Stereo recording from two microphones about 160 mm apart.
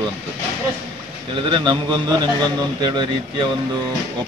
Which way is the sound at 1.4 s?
30° right (ahead or behind).